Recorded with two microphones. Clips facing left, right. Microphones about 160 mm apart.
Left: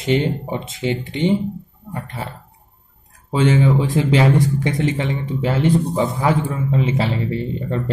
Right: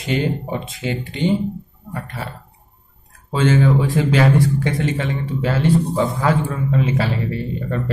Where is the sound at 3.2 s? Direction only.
15° left (ahead or behind).